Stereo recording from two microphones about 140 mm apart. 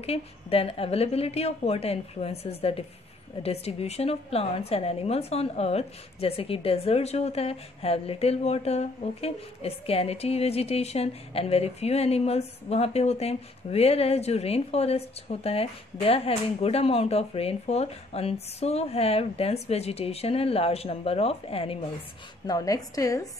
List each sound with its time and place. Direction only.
0.0 s a woman's voice: 45° left (ahead or behind)
22.5 s a woman's voice: 25° left (ahead or behind)